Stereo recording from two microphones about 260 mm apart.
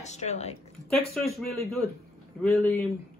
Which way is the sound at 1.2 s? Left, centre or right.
Centre.